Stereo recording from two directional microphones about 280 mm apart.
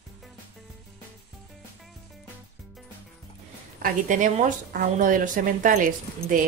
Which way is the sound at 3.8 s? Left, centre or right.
Right.